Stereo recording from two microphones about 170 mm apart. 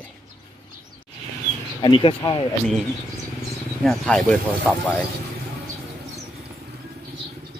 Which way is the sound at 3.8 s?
5° left (ahead or behind).